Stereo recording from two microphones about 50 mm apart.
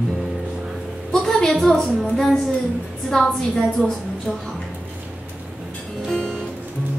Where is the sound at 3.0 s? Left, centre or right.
Centre.